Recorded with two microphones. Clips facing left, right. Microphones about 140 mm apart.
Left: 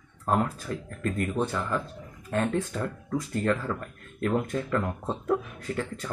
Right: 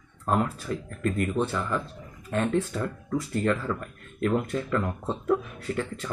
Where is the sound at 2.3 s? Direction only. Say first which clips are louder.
Right 1 dB; 45° left (ahead or behind).